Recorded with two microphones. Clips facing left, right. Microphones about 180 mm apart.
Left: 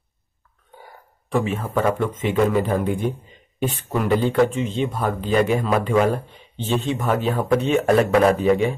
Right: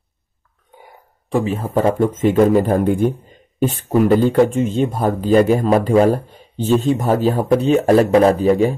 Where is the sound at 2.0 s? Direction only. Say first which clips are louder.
Right 6 dB; 45° right (ahead or behind).